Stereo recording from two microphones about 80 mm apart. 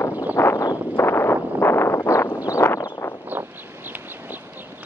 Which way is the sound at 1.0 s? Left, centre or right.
Left.